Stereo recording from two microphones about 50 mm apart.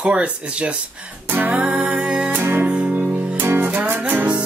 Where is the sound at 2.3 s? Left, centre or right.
Right.